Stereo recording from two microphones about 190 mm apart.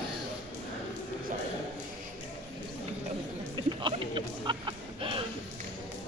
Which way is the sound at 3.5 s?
25° right (ahead or behind).